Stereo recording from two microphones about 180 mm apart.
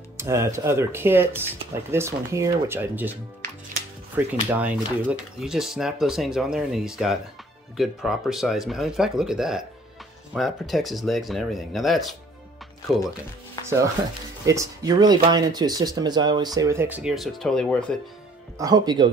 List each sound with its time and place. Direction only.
0.2 s speech: 15° right (ahead or behind)
4.5 s speech: 10° right (ahead or behind)
13.6 s speech: 20° left (ahead or behind)
14.4 s speech: 15° right (ahead or behind); by 17.9 s 5° left (ahead or behind)
18.6 s speech: 20° right (ahead or behind)